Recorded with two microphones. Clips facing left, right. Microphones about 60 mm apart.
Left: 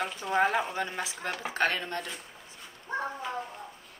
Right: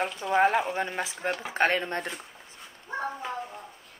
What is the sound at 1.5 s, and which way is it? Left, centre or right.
Speech, right.